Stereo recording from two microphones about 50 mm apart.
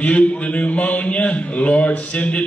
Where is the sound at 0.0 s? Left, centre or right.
Left.